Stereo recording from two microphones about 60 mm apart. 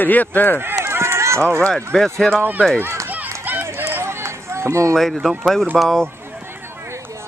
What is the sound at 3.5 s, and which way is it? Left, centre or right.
Run, right.